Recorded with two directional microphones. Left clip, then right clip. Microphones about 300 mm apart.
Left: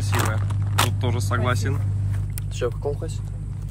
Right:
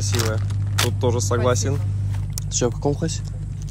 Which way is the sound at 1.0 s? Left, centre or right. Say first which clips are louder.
Right 5 dB; centre.